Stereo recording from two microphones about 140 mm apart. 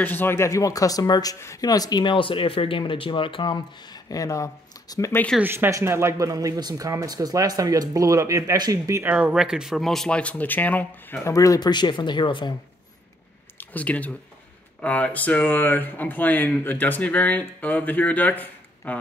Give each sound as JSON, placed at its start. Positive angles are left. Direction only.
{"t": 0.0, "sound": "speech", "side_deg": 15}
{"t": 5.1, "sound": "speech", "side_deg": 10}
{"t": 5.4, "sound": "speech", "side_deg": -15}
{"t": 9.1, "sound": "speech", "side_deg": -5}
{"t": 11.3, "sound": "speech", "side_deg": 25}
{"t": 13.6, "sound": "speech", "side_deg": 10}